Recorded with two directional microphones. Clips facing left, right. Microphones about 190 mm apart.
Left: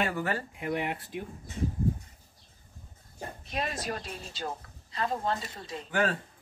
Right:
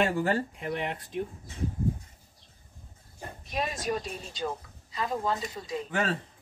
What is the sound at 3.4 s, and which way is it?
Speech, centre (ahead or behind).